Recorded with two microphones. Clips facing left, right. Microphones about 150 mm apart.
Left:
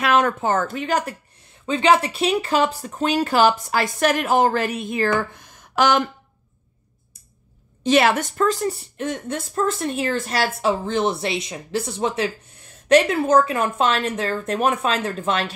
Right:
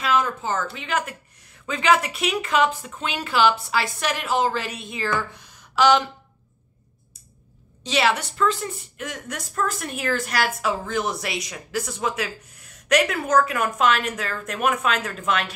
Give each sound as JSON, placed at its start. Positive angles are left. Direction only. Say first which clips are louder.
{"t": 0.0, "sound": "speech", "louder": "left 4 dB", "side_deg": 65}
{"t": 7.8, "sound": "a woman's voice", "louder": "left 5 dB", "side_deg": 50}